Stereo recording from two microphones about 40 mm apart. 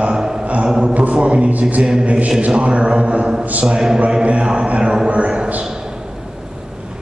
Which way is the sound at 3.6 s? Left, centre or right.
Centre.